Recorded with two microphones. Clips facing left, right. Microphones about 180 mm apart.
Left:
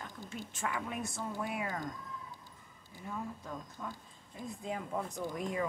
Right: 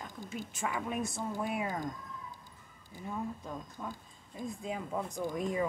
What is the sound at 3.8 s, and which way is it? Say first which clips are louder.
Speech: right 2 dB; 20° right (ahead or behind).